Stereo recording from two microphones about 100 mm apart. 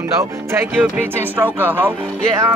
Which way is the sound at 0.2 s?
25° right (ahead or behind).